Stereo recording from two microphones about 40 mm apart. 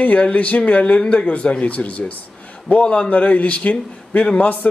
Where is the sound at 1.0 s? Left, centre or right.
Centre.